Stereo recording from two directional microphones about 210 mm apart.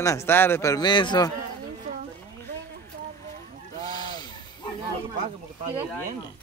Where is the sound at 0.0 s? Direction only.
15° left (ahead or behind).